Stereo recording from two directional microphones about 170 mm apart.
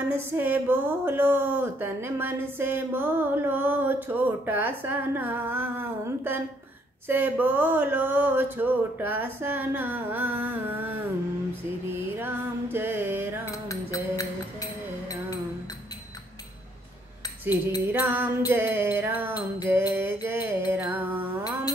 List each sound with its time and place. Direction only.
0.3 s speech: 10° right (ahead or behind)
12.2 s music: 10° right (ahead or behind)
13.5 s music: 20° left (ahead or behind)
17.5 s speech: 10° right (ahead or behind)
20.2 s music: 10° right (ahead or behind)